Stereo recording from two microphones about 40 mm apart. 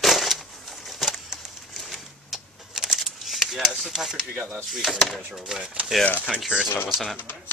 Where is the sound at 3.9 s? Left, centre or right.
Centre.